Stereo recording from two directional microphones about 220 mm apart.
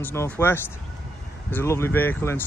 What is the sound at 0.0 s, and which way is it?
Speech, 10° left (ahead or behind).